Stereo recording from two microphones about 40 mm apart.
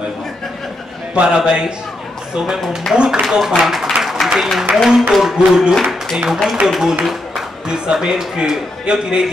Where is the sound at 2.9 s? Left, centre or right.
Centre.